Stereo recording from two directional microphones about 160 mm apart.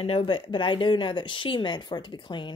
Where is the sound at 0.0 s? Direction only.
35° left (ahead or behind).